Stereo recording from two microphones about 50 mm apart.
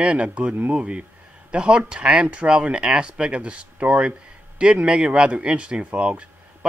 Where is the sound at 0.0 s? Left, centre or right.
Right.